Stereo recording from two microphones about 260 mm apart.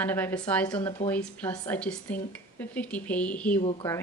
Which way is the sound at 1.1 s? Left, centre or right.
Centre.